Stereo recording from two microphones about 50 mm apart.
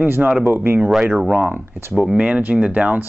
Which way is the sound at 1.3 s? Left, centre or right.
Right.